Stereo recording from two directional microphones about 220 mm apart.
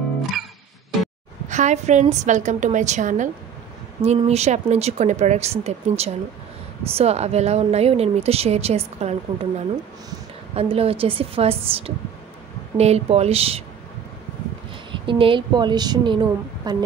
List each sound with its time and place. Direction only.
1.5 s a woman's voice: 35° right (ahead or behind)
14.9 s speech: 25° right (ahead or behind)